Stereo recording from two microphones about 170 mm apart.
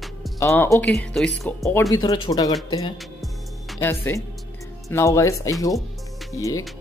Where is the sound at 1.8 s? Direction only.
25° left (ahead or behind).